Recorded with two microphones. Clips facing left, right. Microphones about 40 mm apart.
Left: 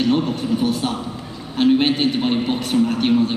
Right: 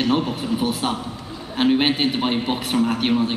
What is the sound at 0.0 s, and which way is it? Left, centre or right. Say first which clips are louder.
A man's voice: left 2 dB; centre.